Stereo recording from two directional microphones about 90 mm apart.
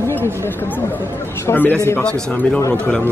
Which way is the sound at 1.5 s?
40° left (ahead or behind).